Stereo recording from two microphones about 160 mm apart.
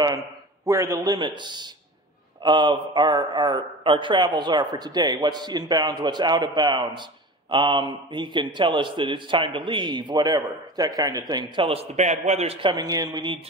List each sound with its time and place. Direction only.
0.7 s a man's voice: 20° right (ahead or behind)